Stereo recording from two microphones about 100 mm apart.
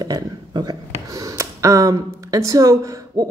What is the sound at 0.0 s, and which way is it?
A woman's voice, 40° right (ahead or behind).